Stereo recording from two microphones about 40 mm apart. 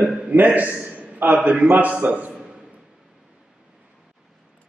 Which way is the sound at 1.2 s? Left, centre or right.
Right.